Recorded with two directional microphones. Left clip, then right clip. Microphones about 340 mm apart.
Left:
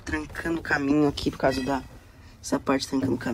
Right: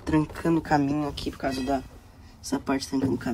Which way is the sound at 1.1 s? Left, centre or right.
Centre.